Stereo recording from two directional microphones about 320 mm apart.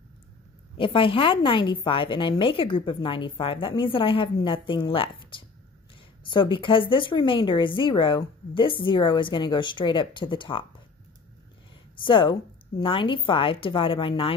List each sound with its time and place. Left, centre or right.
0.7 s a woman's voice: centre
12.0 s a woman's voice: centre